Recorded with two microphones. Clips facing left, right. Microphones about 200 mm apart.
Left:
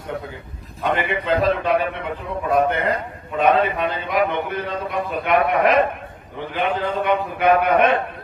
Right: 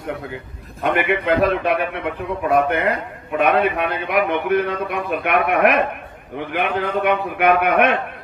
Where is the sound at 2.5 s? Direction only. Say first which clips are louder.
Right 1 dB; 65° right (ahead or behind).